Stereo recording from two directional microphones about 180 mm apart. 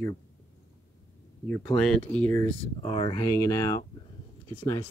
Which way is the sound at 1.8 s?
5° left (ahead or behind).